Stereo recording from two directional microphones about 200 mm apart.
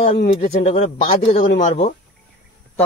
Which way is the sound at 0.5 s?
35° left (ahead or behind).